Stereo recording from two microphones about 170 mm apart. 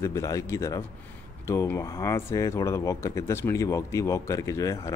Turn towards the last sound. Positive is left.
turn(degrees=20)  # may be behind; listen again after turning